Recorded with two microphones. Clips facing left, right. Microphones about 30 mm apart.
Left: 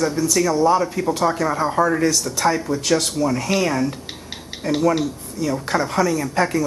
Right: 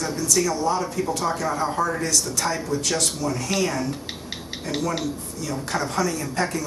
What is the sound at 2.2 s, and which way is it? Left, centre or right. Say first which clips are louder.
Speech: left 5 dB; centre.